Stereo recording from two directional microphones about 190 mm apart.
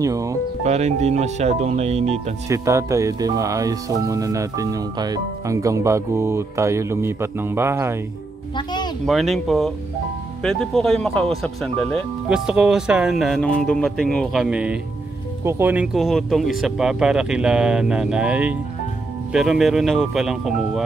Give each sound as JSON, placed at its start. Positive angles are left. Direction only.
{"t": 0.0, "sound": "music", "side_deg": -15}
{"t": 0.7, "sound": "speech", "side_deg": -35}
{"t": 2.4, "sound": "speech", "side_deg": -15}
{"t": 8.5, "sound": "a sound", "side_deg": 20}
{"t": 9.0, "sound": "speech", "side_deg": 0}